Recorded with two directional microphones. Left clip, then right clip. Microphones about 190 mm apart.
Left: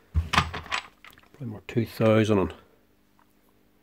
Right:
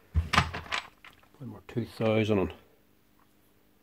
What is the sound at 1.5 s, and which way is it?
Speech, 35° left (ahead or behind).